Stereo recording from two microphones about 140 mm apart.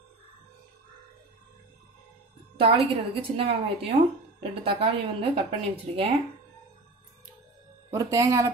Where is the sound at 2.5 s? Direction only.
40° right (ahead or behind).